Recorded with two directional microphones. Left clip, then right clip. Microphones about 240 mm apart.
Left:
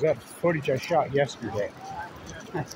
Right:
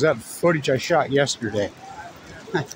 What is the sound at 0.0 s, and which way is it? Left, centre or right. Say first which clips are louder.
Speech: right 5 dB; right.